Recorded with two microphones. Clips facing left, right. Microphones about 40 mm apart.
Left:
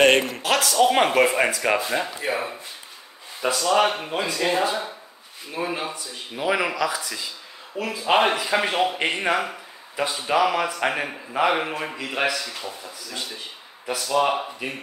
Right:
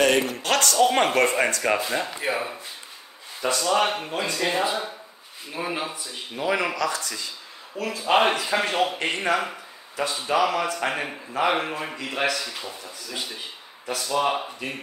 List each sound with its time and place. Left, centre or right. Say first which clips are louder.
0.4 s a man's voice: left 1 dB; centre
5.9 s a man's voice: left 1 dB; centre